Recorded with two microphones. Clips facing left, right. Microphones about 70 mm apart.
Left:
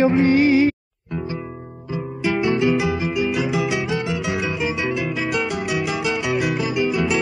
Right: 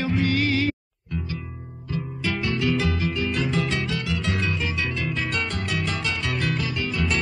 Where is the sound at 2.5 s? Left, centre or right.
Left.